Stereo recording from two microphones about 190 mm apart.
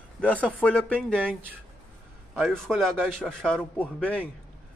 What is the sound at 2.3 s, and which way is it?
A man's voice, centre (ahead or behind).